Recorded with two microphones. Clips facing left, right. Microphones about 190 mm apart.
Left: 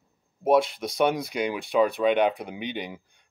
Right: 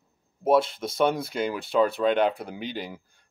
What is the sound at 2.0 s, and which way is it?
Speech, 15° left (ahead or behind).